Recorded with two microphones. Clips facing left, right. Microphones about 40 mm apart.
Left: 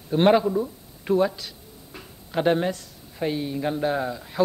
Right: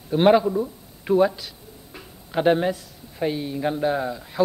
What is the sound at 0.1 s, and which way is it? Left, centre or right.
A man's voice, centre.